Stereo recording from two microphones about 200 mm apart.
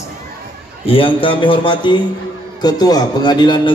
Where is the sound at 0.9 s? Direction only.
25° left (ahead or behind).